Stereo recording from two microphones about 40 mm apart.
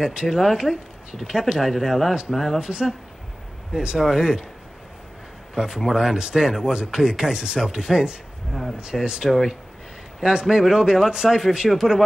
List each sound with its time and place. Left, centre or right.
0.0 s speech: centre
0.4 s speech: centre
2.6 s speech: centre
5.6 s speech: centre